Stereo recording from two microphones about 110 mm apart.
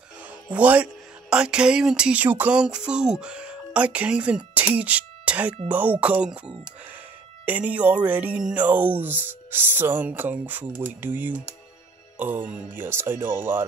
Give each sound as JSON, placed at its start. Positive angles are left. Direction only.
{"t": 0.2, "sound": "music", "side_deg": -10}
{"t": 1.3, "sound": "speech", "side_deg": -5}